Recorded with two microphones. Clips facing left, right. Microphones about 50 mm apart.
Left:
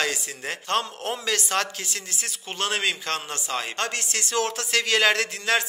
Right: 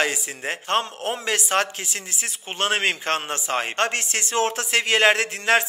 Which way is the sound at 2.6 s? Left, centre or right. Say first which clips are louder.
Right 4 dB; right.